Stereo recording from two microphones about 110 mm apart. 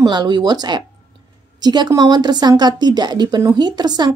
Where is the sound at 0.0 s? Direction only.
40° right (ahead or behind).